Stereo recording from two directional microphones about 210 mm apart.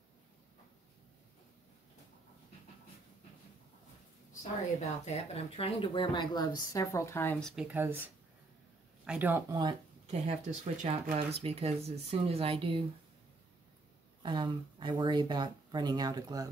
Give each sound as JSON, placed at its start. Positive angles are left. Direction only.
{"t": 5.0, "sound": "a woman's voice", "side_deg": 30}
{"t": 9.5, "sound": "speech", "side_deg": -20}
{"t": 10.0, "sound": "speech", "side_deg": -30}
{"t": 14.2, "sound": "speech", "side_deg": -20}